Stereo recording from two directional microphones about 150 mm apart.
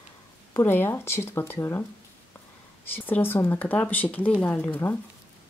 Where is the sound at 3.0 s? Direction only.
10° left (ahead or behind).